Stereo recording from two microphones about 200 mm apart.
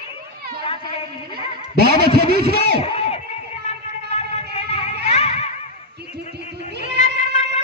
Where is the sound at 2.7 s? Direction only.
30° left (ahead or behind).